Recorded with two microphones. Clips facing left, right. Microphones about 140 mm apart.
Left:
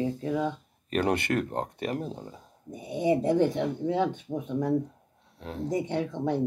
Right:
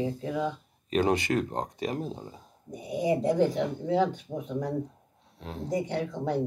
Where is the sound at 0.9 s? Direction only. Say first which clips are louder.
Right 1 dB; 60° left (ahead or behind).